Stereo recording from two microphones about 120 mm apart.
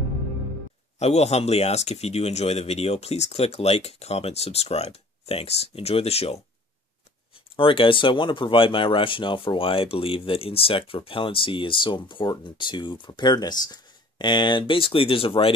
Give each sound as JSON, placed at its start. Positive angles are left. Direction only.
{"t": 0.9, "sound": "speech", "side_deg": 65}
{"t": 7.5, "sound": "speech", "side_deg": 45}